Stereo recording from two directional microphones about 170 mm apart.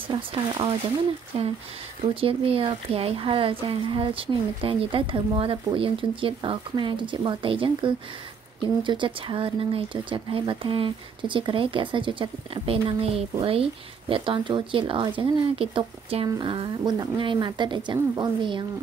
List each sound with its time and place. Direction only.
0.1 s speech: 30° right (ahead or behind)
2.1 s speech: 35° right (ahead or behind)